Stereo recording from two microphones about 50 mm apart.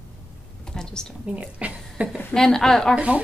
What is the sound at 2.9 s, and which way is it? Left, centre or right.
Speech, right.